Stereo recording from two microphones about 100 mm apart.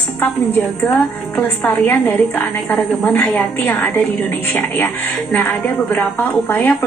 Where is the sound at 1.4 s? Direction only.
15° left (ahead or behind).